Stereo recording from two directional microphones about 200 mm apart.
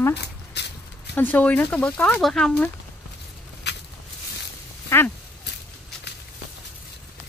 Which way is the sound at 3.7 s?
60° left (ahead or behind).